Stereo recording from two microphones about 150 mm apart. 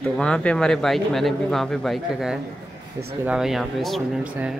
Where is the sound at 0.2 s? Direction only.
5° left (ahead or behind).